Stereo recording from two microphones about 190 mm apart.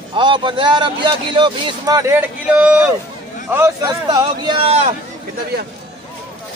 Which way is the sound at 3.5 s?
15° right (ahead or behind).